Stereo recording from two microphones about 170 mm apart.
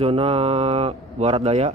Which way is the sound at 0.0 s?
35° right (ahead or behind).